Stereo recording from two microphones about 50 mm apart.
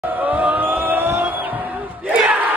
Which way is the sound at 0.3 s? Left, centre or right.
Right.